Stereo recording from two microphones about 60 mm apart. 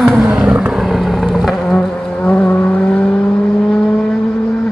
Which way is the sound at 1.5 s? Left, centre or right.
Centre.